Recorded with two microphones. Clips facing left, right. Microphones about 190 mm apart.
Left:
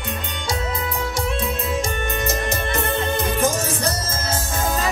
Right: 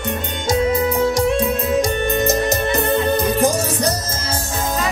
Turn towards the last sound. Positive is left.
turn(degrees=-35)  # may be behind; listen again after turning